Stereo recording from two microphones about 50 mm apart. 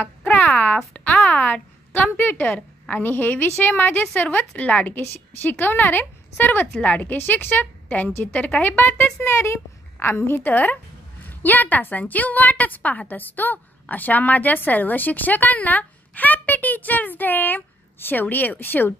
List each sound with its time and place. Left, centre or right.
0.0 s a sound: left
2.1 s a woman's voice: left
4.9 s a woman's voice: left
6.8 s a woman's voice: left
7.2 s speech: left
7.9 s a woman's voice: left
9.4 s a woman's voice: left
10.4 s a woman's voice: left